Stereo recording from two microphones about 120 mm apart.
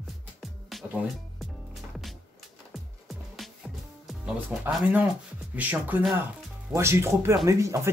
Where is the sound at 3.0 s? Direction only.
Centre (ahead or behind).